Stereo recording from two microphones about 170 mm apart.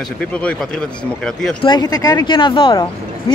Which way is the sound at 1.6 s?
25° left (ahead or behind).